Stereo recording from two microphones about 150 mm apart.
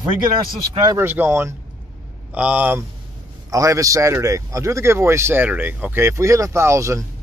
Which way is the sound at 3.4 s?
20° right (ahead or behind).